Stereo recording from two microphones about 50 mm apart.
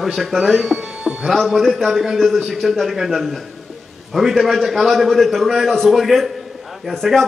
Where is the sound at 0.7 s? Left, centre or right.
Centre.